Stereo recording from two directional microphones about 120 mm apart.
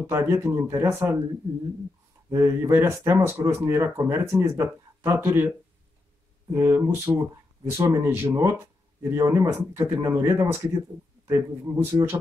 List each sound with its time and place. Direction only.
0.0 s speech: 20° right (ahead or behind)
2.3 s speech: 20° right (ahead or behind)
6.5 s speech: 25° right (ahead or behind)